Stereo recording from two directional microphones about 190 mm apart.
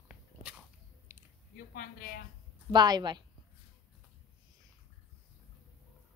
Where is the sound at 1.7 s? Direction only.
55° left (ahead or behind).